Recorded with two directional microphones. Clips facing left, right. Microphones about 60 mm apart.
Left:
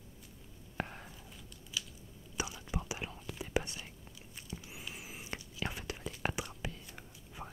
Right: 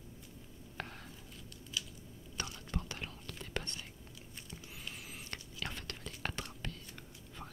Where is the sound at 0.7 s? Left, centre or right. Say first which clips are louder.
Left 5 dB; centre.